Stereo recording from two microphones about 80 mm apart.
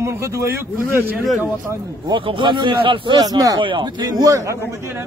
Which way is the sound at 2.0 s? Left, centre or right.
Right.